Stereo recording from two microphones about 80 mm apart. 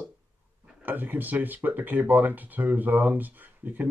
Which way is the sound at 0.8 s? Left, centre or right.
Right.